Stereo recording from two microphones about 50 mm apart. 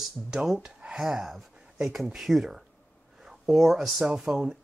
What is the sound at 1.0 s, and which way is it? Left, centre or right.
Speech, centre.